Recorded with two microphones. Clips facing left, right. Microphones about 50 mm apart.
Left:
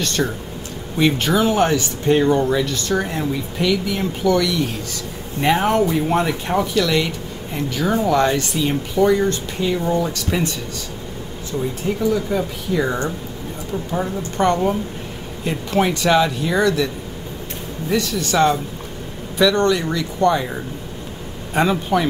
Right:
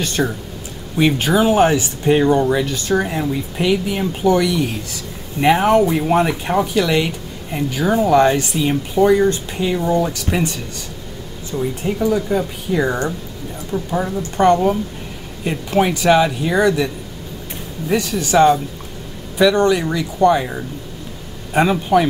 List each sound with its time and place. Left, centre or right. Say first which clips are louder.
0.0 s speech: right 1 dB; centre
3.5 s speech: right 2 dB; right
5.4 s speech: right 4 dB; centre
11.5 s speech: right 1 dB; centre
12.3 s speech: right 2 dB; centre
14.4 s speech: right 4 dB; centre